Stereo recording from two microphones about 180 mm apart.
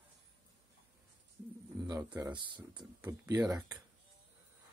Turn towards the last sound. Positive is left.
turn(degrees=-20)  # may be behind; listen again after turning